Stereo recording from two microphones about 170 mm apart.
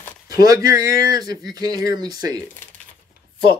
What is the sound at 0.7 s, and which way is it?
Speech, 20° right (ahead or behind).